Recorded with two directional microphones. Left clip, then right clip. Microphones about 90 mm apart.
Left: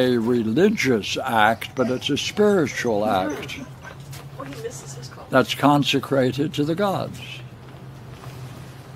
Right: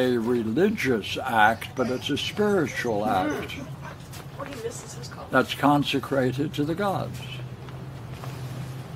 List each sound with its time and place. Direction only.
0.0 s speech: 30° left (ahead or behind)
5.3 s speech: 35° left (ahead or behind)